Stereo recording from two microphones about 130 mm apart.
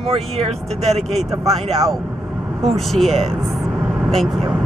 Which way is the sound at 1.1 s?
Centre (ahead or behind).